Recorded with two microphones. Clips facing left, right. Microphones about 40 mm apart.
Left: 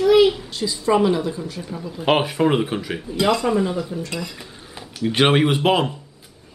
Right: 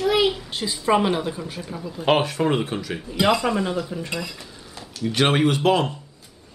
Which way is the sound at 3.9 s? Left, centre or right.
Right.